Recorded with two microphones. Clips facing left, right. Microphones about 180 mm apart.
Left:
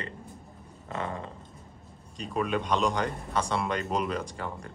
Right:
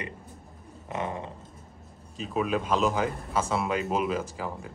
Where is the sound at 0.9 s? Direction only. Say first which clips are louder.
Right 2 dB; 20° right (ahead or behind).